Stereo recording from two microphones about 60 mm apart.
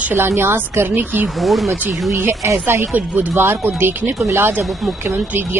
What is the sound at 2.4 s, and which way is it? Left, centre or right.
Speech, right.